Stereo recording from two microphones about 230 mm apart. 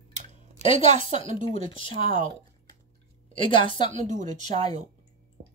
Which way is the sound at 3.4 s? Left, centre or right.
Left.